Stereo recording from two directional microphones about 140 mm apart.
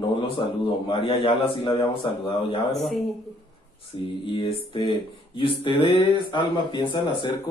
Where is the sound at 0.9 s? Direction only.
40° left (ahead or behind).